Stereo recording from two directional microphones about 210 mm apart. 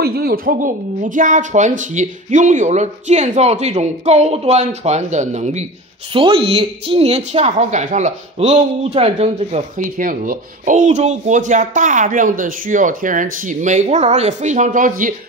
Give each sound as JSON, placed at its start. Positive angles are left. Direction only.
{"t": 0.0, "sound": "speech", "side_deg": -50}